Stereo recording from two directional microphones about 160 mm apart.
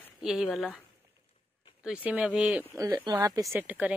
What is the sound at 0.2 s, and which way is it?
Speech, centre (ahead or behind).